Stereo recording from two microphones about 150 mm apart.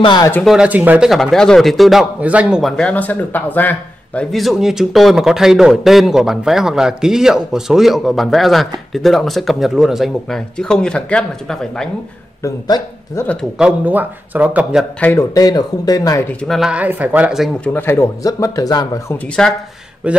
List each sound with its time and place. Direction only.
0.0 s speech: 30° left (ahead or behind)
0.5 s a man's voice: 10° right (ahead or behind)
12.4 s speech: 25° left (ahead or behind)
13.6 s a man's voice: 10° right (ahead or behind)
15.0 s speech: 10° left (ahead or behind)
15.3 s speech: 25° left (ahead or behind)
16.4 s a man's voice: centre (ahead or behind)
17.7 s speech: 15° left (ahead or behind)
19.4 s a man's voice: 5° left (ahead or behind)
20.0 s a man's voice: 10° right (ahead or behind)